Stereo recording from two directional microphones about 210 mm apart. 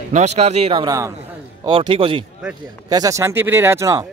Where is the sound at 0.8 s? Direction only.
15° right (ahead or behind).